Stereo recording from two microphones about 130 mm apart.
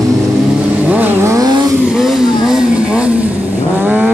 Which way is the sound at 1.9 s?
5° right (ahead or behind).